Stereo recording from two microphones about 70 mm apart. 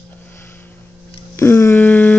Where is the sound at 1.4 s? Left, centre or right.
Left.